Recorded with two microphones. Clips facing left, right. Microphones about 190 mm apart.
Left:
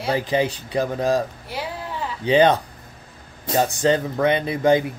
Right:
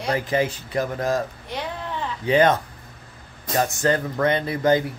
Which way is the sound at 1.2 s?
5° left (ahead or behind).